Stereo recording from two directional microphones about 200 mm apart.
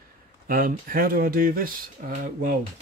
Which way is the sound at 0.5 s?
45° right (ahead or behind).